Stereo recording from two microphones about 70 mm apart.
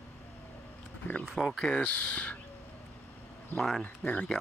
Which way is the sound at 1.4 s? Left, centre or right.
Centre.